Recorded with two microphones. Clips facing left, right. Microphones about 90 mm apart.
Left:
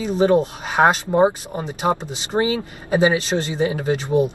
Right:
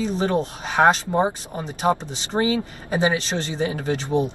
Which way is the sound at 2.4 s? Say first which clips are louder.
Left 1 dB; 30° left (ahead or behind).